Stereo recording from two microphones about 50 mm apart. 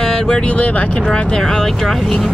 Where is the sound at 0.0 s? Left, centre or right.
Centre.